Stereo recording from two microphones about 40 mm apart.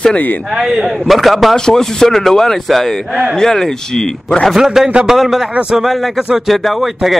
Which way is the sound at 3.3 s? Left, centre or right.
Centre.